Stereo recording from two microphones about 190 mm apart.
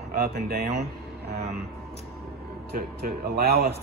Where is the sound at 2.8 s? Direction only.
50° right (ahead or behind).